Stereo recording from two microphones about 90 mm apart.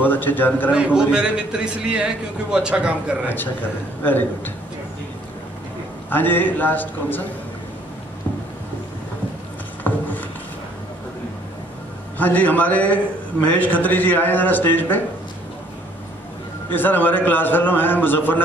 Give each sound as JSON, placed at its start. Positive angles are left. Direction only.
{"t": 0.0, "sound": "a man's voice", "side_deg": 20}
{"t": 0.7, "sound": "a man's voice", "side_deg": -10}
{"t": 6.0, "sound": "a man's voice", "side_deg": 20}
{"t": 9.8, "sound": "a sound", "side_deg": 20}
{"t": 12.2, "sound": "a man's voice", "side_deg": 20}
{"t": 16.7, "sound": "a man's voice", "side_deg": 20}